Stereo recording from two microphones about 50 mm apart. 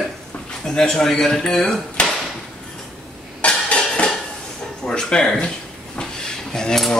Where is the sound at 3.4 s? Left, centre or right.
Left.